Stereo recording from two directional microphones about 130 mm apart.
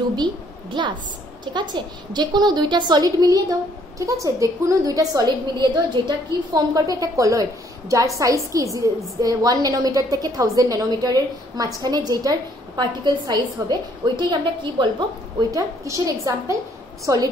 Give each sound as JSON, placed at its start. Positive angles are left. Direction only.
{"t": 0.8, "sound": "a woman's voice", "side_deg": -35}
{"t": 8.5, "sound": "a woman's voice", "side_deg": -25}
{"t": 15.5, "sound": "a woman's voice", "side_deg": -25}